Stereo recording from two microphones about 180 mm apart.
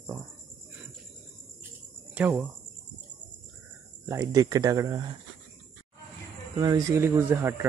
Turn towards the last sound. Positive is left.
turn(degrees=-15)  # may be behind; listen again after turning